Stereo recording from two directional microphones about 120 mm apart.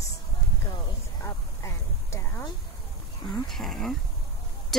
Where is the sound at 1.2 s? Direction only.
20° left (ahead or behind).